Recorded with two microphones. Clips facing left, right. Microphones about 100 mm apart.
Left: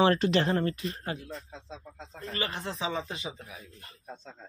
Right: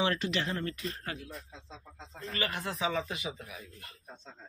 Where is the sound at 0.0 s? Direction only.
40° left (ahead or behind).